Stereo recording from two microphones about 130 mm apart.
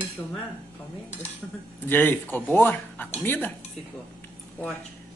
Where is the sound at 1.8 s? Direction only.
15° left (ahead or behind).